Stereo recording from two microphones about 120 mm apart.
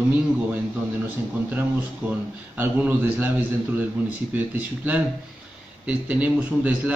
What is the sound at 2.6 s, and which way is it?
Speech, 15° right (ahead or behind).